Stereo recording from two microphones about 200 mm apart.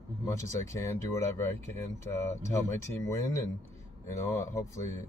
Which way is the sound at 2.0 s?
15° left (ahead or behind).